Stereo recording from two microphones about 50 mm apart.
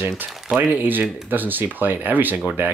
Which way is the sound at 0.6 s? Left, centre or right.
Right.